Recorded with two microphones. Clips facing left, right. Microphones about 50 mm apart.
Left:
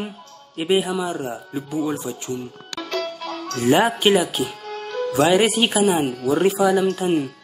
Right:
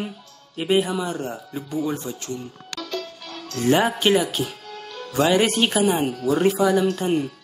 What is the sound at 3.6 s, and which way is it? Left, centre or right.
Speech, centre.